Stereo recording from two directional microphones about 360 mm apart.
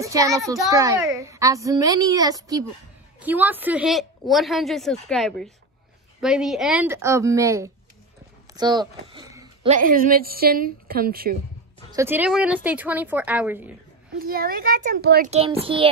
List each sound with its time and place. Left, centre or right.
0.0 s a woman's voice: centre; by 11.3 s right
11.9 s a woman's voice: centre
14.1 s a child's voice: right